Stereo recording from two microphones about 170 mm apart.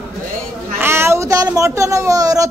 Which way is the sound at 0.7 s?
15° right (ahead or behind).